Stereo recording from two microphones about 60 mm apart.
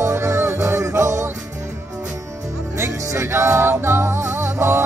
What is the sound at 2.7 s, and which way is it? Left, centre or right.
Music, right.